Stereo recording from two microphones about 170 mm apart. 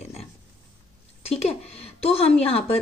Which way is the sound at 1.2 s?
35° left (ahead or behind).